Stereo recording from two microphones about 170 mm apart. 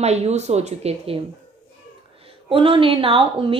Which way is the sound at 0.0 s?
40° right (ahead or behind).